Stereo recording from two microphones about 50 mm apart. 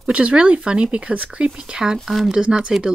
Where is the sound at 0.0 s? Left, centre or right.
Right.